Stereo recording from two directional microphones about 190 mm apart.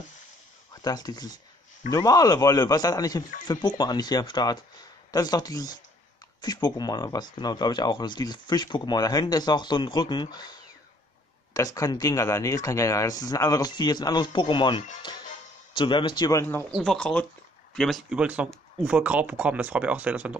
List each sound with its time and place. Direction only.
0.8 s a man's voice: 20° left (ahead or behind)
16.7 s speech: 5° left (ahead or behind)